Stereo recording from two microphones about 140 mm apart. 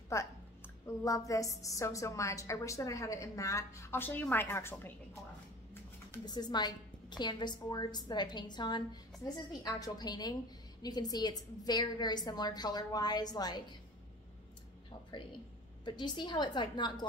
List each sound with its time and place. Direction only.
0.1 s a woman's voice: 20° left (ahead or behind)
6.2 s a woman's voice: 30° left (ahead or behind)
14.9 s a sound: 35° left (ahead or behind)
15.8 s a woman's voice: 30° left (ahead or behind)